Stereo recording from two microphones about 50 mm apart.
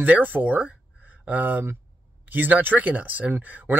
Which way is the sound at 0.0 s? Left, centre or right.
Right.